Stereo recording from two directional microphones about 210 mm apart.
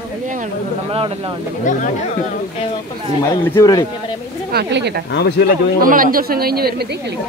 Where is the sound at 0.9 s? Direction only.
25° right (ahead or behind).